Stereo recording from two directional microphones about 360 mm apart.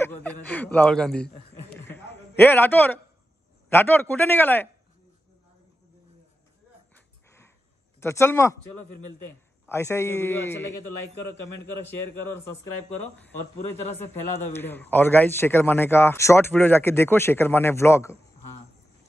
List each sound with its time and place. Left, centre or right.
0.0 s speech: centre
1.9 s a sound: centre
3.7 s speech: centre
8.0 s speech: centre
8.7 s a man's voice: left
9.7 s speech: centre
12.1 s a man's voice: left
13.0 s speech: centre
14.5 s speech: centre